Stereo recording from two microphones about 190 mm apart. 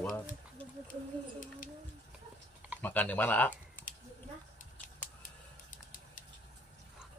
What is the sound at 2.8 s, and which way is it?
Speech, 10° left (ahead or behind).